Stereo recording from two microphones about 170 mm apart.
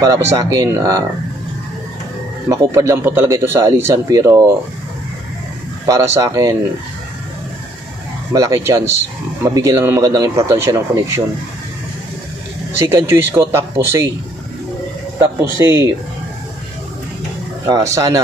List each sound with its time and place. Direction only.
0.0 s speech: 20° right (ahead or behind)
2.5 s speech: 15° right (ahead or behind)
5.9 s speech: 15° right (ahead or behind)
8.3 s speech: 20° right (ahead or behind)
12.8 s speech: 15° right (ahead or behind)
15.6 s speech: 15° right (ahead or behind)
17.6 s speech: 20° right (ahead or behind)